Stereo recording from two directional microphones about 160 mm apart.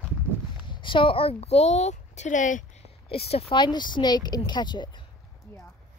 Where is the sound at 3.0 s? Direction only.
40° left (ahead or behind).